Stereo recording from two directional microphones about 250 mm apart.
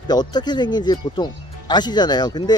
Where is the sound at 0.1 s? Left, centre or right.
Centre.